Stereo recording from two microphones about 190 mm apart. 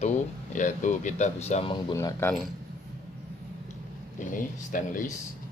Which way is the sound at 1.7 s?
15° left (ahead or behind).